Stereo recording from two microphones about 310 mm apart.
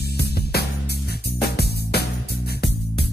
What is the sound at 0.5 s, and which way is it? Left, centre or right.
Music, left.